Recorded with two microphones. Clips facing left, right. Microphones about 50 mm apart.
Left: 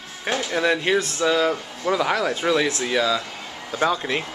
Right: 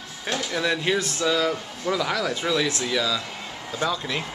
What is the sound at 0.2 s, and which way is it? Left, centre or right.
Speech, left.